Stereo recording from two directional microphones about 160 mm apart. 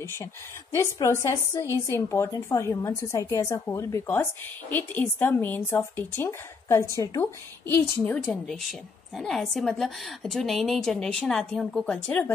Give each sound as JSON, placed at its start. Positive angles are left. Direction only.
{"t": 0.7, "sound": "a woman's voice", "side_deg": 20}
{"t": 8.0, "sound": "a woman's voice", "side_deg": 5}